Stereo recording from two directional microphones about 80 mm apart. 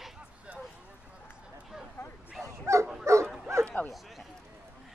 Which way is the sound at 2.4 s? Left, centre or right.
Right.